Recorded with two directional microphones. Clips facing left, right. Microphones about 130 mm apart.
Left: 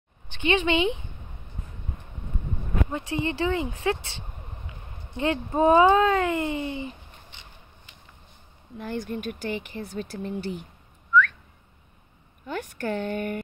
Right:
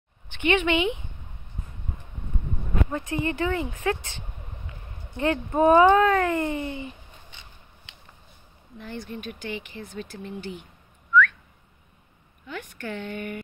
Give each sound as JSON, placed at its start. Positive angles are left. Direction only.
{"t": 0.3, "sound": "speech", "side_deg": 30}
{"t": 2.9, "sound": "speech", "side_deg": 25}
{"t": 8.7, "sound": "speech", "side_deg": 50}
{"t": 12.4, "sound": "speech", "side_deg": 40}